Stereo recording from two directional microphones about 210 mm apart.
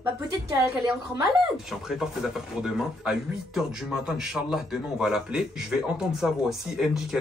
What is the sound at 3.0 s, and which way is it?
Speech, 5° right (ahead or behind).